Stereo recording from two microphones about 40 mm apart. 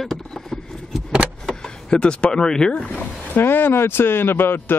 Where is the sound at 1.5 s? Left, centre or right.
Left.